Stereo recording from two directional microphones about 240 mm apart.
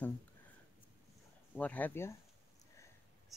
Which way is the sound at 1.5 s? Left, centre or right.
Centre.